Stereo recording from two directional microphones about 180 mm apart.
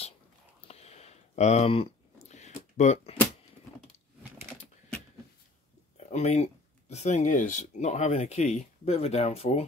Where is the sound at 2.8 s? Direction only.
40° left (ahead or behind).